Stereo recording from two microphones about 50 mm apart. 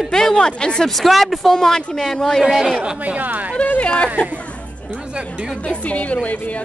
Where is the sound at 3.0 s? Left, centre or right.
Right.